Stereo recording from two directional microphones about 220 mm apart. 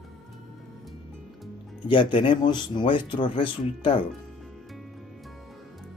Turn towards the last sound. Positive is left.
turn(degrees=25)  # may be behind; listen again after turning